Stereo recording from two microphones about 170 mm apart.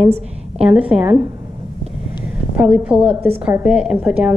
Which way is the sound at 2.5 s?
5° right (ahead or behind).